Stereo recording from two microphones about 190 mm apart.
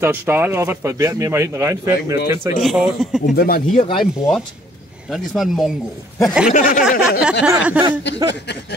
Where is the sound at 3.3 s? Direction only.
50° left (ahead or behind).